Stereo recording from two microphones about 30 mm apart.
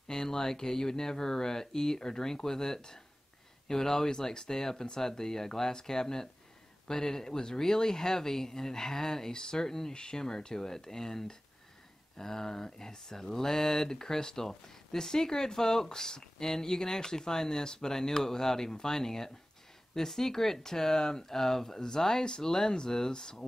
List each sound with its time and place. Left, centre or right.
0.1 s speech: left